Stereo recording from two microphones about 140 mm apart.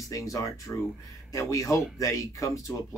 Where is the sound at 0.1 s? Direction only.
25° left (ahead or behind).